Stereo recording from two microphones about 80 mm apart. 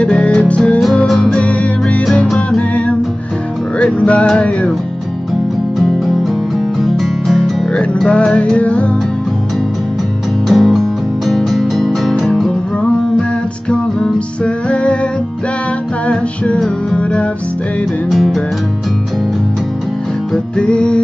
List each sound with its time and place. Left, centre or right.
0.0 s music: centre
1.0 s music: centre
1.3 s music: centre
2.0 s music: centre
2.7 s music: centre
5.8 s music: centre
10.5 s music: centre
13.7 s music: centre
16.9 s music: centre
18.1 s music: centre
20.5 s music: centre